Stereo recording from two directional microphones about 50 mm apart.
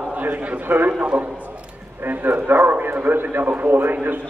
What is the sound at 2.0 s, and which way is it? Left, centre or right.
A man's voice, right.